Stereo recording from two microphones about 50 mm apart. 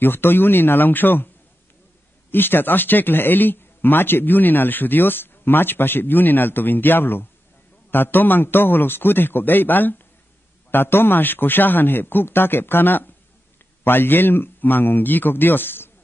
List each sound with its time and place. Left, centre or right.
0.0 s speech: left
2.3 s speech: left